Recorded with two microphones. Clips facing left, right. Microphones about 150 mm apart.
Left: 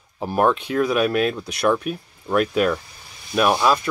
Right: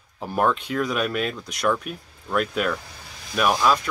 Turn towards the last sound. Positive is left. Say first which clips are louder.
# left 3 dB
turn(degrees=5)  # may be behind; listen again after turning